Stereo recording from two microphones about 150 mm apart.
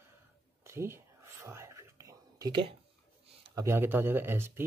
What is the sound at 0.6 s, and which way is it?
Whispering, 15° right (ahead or behind).